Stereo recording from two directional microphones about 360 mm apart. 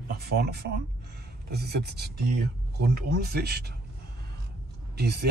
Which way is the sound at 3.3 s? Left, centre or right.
Right.